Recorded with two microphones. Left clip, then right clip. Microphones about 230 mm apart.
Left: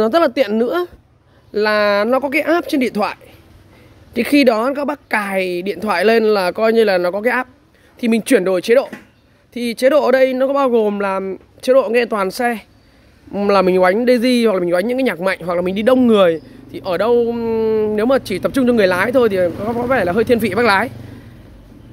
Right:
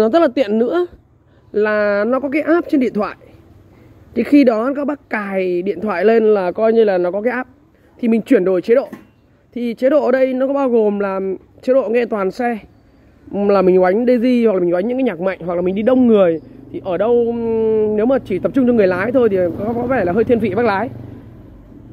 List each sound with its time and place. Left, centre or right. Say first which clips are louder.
0.0 s a woman's voice: even; left
8.0 s speech: even; left